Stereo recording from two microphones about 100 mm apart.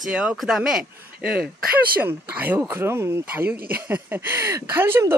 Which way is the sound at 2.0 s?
20° right (ahead or behind).